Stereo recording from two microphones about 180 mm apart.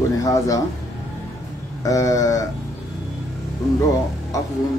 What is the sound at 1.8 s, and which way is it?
Speech, 20° left (ahead or behind).